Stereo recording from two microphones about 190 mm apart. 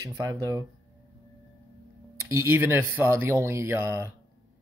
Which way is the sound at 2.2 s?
15° right (ahead or behind).